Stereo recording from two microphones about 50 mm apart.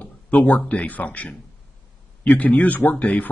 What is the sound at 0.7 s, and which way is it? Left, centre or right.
Speech, left.